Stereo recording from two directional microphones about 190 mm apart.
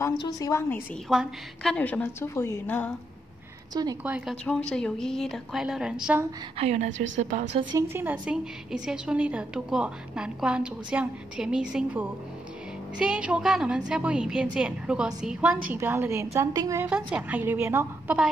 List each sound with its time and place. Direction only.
0.0 s a woman's voice: 20° left (ahead or behind)
4.0 s a woman's voice: 5° right (ahead or behind)
4.5 s a woman's voice: 5° left (ahead or behind)
6.6 s a woman's voice: 35° right (ahead or behind)
7.7 s a woman's voice: 10° right (ahead or behind)